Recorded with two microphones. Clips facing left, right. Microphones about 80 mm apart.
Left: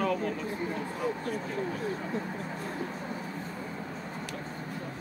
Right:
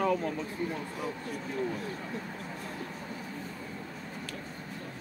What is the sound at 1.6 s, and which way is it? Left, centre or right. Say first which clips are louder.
Speech: left 2 dB; centre.